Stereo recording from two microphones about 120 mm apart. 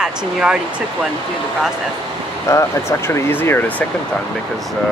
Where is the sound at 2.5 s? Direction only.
25° left (ahead or behind).